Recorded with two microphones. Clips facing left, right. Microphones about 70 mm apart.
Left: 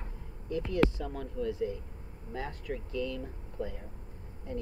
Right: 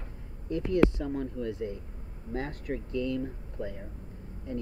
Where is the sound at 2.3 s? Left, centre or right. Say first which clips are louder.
Right 3 dB; right.